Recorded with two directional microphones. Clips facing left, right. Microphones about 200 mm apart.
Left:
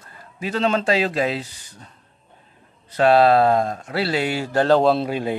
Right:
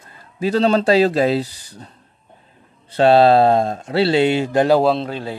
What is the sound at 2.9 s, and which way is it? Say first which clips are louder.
Speech: right 3 dB; 30° right (ahead or behind).